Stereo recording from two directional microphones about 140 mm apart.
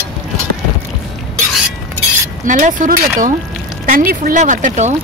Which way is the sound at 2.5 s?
65° right (ahead or behind).